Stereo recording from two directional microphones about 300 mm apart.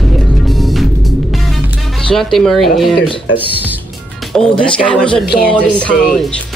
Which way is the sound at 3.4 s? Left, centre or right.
Centre.